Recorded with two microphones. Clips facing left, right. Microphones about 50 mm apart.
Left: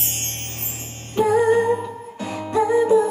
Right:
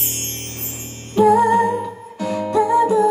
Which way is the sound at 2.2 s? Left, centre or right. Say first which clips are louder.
Right 3 dB; centre.